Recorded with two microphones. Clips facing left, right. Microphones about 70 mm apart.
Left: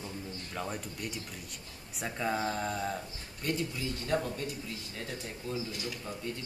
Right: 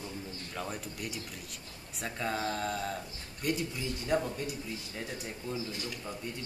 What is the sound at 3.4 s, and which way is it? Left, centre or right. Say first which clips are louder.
A man's voice: even; centre.